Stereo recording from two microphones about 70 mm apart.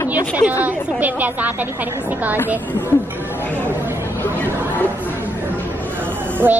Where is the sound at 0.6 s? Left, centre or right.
Right.